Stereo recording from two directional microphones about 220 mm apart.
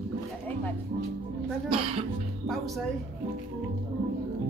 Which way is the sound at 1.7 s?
25° right (ahead or behind).